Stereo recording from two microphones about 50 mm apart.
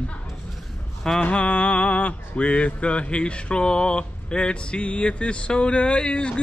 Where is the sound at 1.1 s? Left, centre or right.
Left.